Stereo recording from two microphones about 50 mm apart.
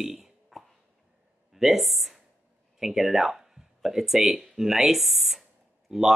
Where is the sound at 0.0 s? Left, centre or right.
Centre.